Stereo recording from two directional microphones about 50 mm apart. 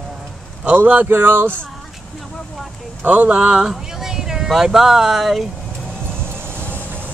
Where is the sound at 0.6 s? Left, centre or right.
Right.